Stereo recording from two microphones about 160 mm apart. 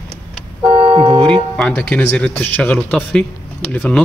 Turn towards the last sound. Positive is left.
turn(degrees=5)  # may be behind; listen again after turning